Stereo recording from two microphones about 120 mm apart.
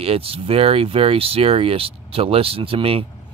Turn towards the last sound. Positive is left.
turn(degrees=-50)  # may be behind; listen again after turning